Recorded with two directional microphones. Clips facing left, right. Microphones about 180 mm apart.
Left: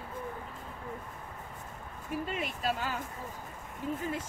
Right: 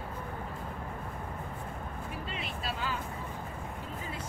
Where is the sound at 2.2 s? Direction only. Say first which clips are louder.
Left 6 dB; 45° left (ahead or behind).